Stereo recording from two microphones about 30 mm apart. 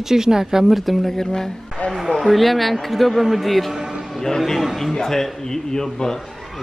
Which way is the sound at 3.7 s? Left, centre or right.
Centre.